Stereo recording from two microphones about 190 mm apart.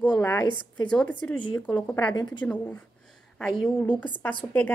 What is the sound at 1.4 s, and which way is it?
Speech, 25° left (ahead or behind).